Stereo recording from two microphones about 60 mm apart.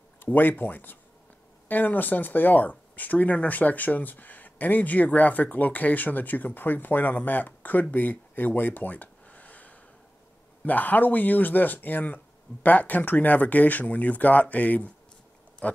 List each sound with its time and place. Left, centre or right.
0.2 s speech: left
7.9 s a sound: left
10.6 s speech: left
15.6 s pig: left